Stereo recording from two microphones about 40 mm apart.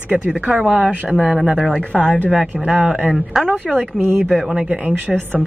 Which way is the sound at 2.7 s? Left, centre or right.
Centre.